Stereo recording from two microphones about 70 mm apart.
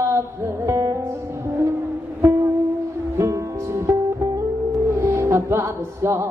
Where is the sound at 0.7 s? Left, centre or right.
Right.